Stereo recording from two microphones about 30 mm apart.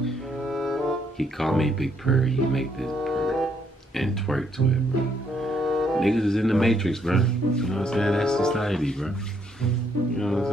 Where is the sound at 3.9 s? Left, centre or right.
Centre.